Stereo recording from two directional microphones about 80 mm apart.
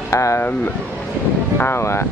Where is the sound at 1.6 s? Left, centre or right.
Left.